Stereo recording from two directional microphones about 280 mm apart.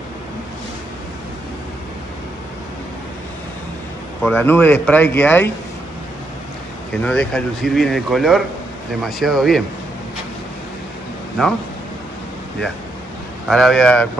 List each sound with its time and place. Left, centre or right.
4.2 s speech: centre
6.9 s speech: centre
11.4 s speech: centre
13.5 s speech: centre